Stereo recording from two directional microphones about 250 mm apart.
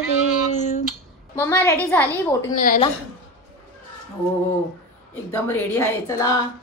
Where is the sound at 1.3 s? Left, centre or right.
Centre.